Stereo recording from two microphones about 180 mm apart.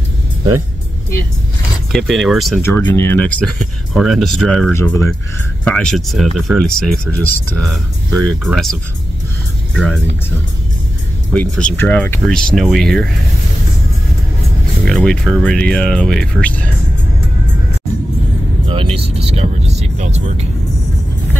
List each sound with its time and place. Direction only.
1.9 s speech: centre (ahead or behind)
2.6 s speech: 10° left (ahead or behind)
4.7 s speech: 15° left (ahead or behind)
11.3 s speech: 5° left (ahead or behind)
14.9 s speech: 5° left (ahead or behind)
18.7 s speech: 30° right (ahead or behind)